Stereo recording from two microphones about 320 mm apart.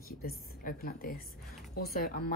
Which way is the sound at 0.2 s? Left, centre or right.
Left.